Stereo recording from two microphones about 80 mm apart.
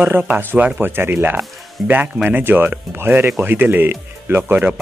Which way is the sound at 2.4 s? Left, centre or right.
Right.